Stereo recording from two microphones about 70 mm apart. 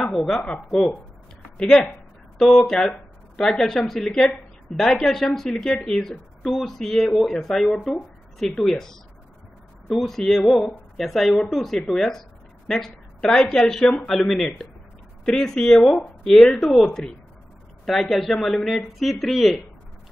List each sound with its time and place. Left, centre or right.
0.1 s a woman's voice: centre